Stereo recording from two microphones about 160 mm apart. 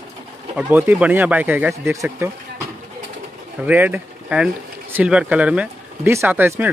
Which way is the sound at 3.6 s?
10° right (ahead or behind).